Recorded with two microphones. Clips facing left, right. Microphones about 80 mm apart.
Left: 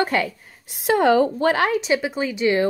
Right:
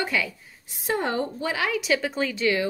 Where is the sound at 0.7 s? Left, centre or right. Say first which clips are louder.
Left 9 dB; left.